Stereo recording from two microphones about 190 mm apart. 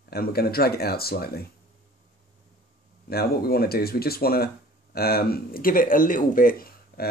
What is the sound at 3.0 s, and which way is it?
Speech, 55° left (ahead or behind).